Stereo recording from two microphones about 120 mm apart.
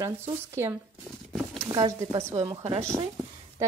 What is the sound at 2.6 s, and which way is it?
Speech, 60° right (ahead or behind).